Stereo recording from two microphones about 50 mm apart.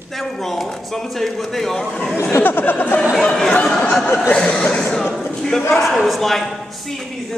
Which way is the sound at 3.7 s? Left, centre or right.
Centre.